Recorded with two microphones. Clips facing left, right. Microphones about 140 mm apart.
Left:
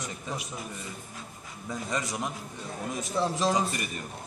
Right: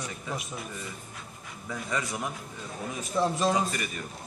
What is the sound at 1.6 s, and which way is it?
Speech, 20° left (ahead or behind).